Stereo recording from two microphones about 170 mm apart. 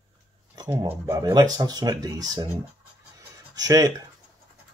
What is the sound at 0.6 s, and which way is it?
Mantra, 15° right (ahead or behind).